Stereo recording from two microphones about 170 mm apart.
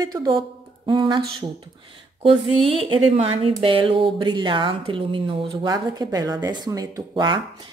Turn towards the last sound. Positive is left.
turn(degrees=-25)  # may be behind; listen again after turning